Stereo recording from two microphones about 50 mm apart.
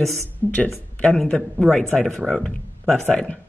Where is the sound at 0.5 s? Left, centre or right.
Left.